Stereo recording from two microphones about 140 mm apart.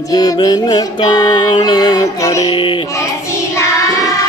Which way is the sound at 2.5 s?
35° left (ahead or behind).